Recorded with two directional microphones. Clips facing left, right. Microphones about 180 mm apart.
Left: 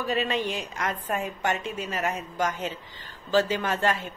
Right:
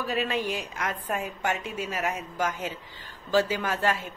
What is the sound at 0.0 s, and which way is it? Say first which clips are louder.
A woman's voice: left 1 dB; 5° right (ahead or behind).